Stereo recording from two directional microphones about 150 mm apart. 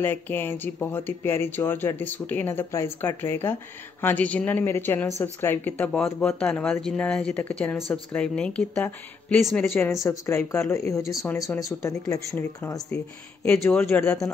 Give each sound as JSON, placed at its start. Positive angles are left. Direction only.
{"t": 0.0, "sound": "speech", "side_deg": 15}
{"t": 8.7, "sound": "speech", "side_deg": 15}
{"t": 9.4, "sound": "speech", "side_deg": 0}
{"t": 10.0, "sound": "speech", "side_deg": 20}
{"t": 11.4, "sound": "speech", "side_deg": 0}
{"t": 12.1, "sound": "speech", "side_deg": 20}
{"t": 13.5, "sound": "speech", "side_deg": 10}